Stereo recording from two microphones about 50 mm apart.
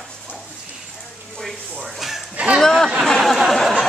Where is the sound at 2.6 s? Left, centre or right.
Centre.